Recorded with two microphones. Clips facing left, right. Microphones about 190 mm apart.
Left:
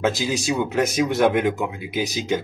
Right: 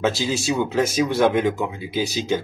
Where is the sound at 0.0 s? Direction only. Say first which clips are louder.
Even; 15° left (ahead or behind).